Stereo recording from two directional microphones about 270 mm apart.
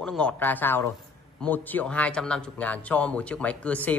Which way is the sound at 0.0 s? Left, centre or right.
Centre.